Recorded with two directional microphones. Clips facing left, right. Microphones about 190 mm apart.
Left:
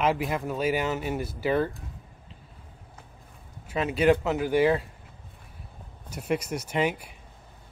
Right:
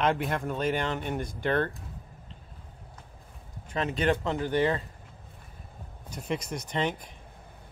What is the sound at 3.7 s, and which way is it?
Speech, 10° left (ahead or behind).